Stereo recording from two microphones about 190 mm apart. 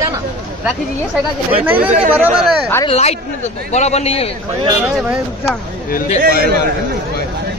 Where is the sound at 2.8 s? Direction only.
35° left (ahead or behind).